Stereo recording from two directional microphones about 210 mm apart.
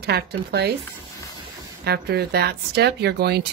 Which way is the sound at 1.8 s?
50° right (ahead or behind).